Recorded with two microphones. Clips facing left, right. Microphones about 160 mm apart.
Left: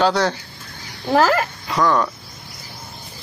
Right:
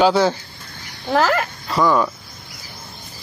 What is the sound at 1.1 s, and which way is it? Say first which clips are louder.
Speech: left 1 dB; 10° left (ahead or behind).